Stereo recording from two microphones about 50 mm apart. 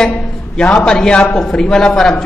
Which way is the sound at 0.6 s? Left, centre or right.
Centre.